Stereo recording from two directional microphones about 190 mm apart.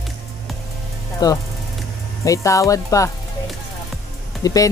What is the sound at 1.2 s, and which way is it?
Speech, 20° left (ahead or behind).